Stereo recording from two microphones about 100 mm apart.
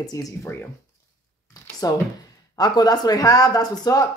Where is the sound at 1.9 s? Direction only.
40° left (ahead or behind).